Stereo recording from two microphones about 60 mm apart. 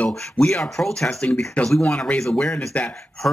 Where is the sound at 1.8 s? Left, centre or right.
Centre.